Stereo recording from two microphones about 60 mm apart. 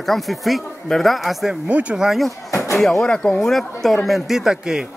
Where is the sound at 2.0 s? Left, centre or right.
Centre.